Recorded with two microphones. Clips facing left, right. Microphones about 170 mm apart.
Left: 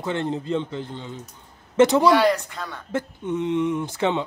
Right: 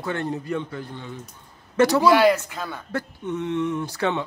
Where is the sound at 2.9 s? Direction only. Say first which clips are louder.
Left 4 dB; 20° left (ahead or behind).